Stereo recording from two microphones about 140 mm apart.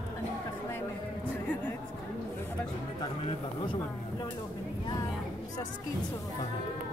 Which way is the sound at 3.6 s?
35° left (ahead or behind).